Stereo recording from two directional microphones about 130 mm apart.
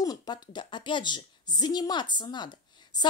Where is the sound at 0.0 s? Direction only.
30° left (ahead or behind).